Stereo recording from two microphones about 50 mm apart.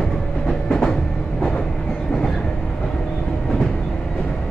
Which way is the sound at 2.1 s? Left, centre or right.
Centre.